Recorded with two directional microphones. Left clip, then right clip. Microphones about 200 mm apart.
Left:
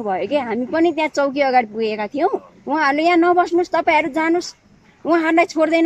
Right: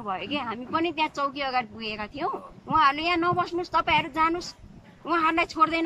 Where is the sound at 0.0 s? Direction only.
40° left (ahead or behind).